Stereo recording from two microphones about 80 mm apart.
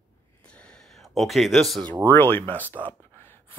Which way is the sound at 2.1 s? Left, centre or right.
Left.